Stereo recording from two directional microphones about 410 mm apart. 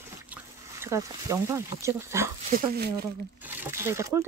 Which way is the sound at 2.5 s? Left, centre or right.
Right.